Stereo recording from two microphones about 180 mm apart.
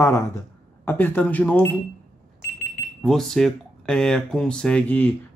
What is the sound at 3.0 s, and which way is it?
Speech, centre (ahead or behind).